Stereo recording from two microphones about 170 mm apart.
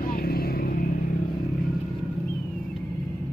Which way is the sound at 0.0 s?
60° left (ahead or behind).